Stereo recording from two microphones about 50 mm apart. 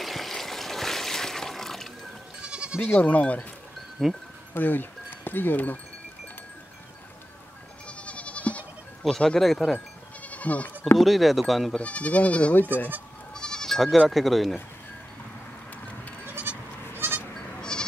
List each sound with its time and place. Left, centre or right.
0.0 s water: centre
2.4 s goat: centre
2.8 s speech: left
4.0 s speech: centre
4.6 s speech: left
8.0 s goat: left
9.1 s speech: centre
10.2 s goat: left
11.0 s speech: centre
11.8 s speech: left
13.3 s bleat: centre
13.9 s speech: centre
16.4 s goat: right
17.6 s bleat: centre